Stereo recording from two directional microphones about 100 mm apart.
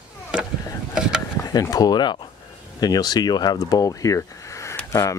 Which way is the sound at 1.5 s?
40° left (ahead or behind).